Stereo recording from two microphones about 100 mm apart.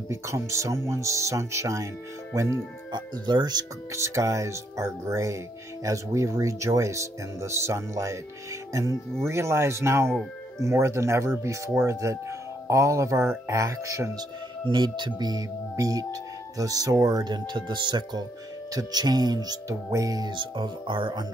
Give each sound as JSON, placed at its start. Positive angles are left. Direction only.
{"t": 0.1, "sound": "speech", "side_deg": -30}
{"t": 2.9, "sound": "speech", "side_deg": -45}
{"t": 3.9, "sound": "speech", "side_deg": -30}
{"t": 9.2, "sound": "speech", "side_deg": -25}
{"t": 14.7, "sound": "speech", "side_deg": -50}